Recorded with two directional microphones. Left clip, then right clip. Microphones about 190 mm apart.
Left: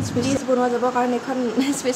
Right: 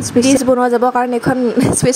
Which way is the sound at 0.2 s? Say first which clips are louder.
Right 8 dB; 40° right (ahead or behind).